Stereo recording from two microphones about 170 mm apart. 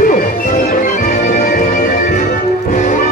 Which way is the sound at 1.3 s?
55° left (ahead or behind).